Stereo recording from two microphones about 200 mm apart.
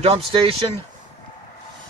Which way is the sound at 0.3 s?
25° right (ahead or behind).